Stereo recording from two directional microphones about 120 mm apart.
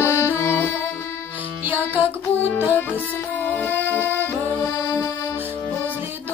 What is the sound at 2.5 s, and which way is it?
Music, 15° left (ahead or behind).